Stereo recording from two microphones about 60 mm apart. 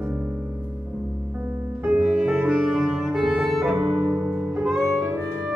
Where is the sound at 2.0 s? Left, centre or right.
Centre.